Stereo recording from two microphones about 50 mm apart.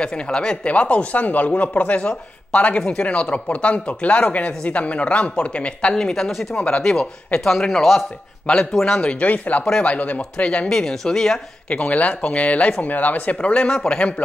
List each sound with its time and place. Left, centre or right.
0.0 s speech: centre
6.5 s speech: left; by 8.0 s centre
9.0 s speech: left
10.7 s speech: centre
11.7 s speech: left